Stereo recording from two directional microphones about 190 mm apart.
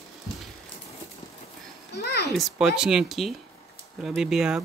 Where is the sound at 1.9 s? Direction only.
60° left (ahead or behind).